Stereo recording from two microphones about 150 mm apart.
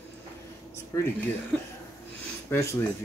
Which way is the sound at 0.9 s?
25° left (ahead or behind).